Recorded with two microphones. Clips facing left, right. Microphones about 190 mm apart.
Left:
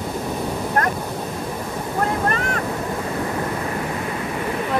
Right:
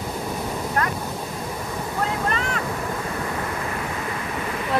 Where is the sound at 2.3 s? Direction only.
50° left (ahead or behind).